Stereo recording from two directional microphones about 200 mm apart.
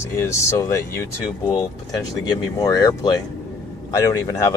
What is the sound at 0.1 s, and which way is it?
Speech, 15° left (ahead or behind).